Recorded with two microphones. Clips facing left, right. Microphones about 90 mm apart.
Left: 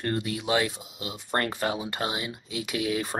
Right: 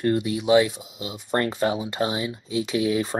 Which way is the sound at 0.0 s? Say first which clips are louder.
Right 6 dB; 20° right (ahead or behind).